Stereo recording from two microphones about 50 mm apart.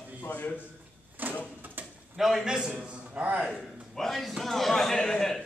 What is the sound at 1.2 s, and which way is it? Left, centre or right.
Vehicle, right.